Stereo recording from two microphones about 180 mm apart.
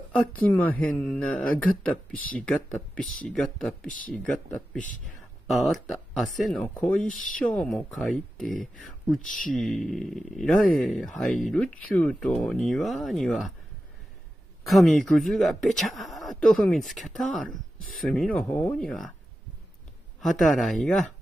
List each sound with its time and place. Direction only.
0.1 s speech: 10° left (ahead or behind)
7.1 s speech: 50° left (ahead or behind)
7.5 s speech: 5° left (ahead or behind)
9.5 s speech: centre (ahead or behind)
14.6 s speech: centre (ahead or behind)
20.2 s speech: centre (ahead or behind)